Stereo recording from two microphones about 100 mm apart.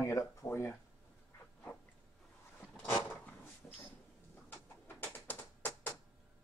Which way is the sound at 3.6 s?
15° left (ahead or behind).